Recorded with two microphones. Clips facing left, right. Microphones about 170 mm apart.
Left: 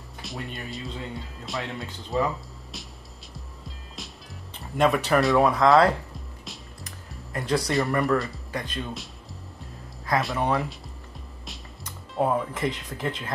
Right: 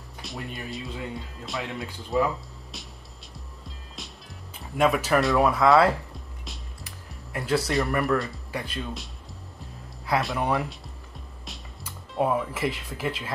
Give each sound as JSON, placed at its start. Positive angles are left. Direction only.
{"t": 0.2, "sound": "speech", "side_deg": 0}
{"t": 3.3, "sound": "music", "side_deg": 0}
{"t": 7.3, "sound": "speech", "side_deg": -5}
{"t": 10.0, "sound": "music", "side_deg": -5}